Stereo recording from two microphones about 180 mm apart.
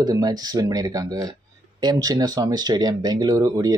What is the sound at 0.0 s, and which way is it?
Speech, 20° right (ahead or behind).